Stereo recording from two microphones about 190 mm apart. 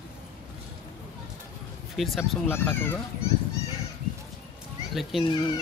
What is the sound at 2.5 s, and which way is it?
Speech, 10° left (ahead or behind).